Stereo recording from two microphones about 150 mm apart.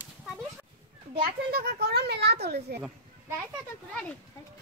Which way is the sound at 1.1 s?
85° right.